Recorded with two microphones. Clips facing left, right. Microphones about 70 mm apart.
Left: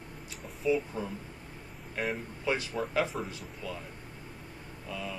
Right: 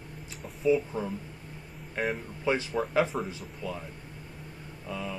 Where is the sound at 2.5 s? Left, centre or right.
Right.